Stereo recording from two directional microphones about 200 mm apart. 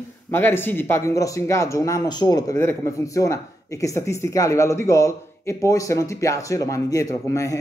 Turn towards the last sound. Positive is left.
turn(degrees=15)  # may be behind; listen again after turning